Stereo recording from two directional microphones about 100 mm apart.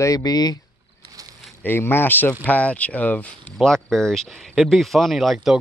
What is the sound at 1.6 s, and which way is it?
Speech, 20° left (ahead or behind).